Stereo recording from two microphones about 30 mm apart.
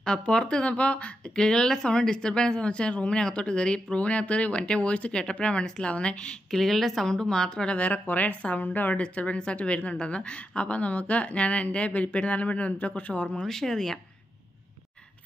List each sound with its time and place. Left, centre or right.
0.0 s speech: left
1.3 s a woman's voice: left
5.4 s speech: left
6.5 s speech: centre
7.1 s a woman's voice: centre
7.7 s speech: left
9.1 s speech: left
9.4 s speech: left
12.9 s speech: left
13.4 s speech: centre